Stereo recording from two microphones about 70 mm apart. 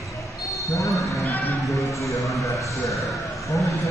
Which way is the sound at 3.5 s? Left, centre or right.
Left.